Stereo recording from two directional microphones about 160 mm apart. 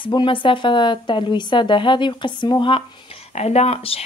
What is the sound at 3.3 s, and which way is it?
Speech, 40° left (ahead or behind).